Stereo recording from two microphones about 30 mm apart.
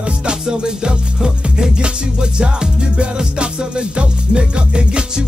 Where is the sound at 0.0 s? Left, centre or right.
Right.